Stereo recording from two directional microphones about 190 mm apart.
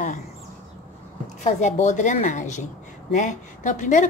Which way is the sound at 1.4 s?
35° left (ahead or behind).